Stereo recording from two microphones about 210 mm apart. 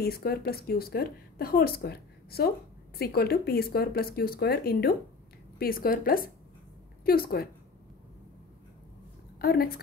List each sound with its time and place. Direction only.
0.0 s a woman's voice: 45° left (ahead or behind)
9.4 s a woman's voice: 45° left (ahead or behind)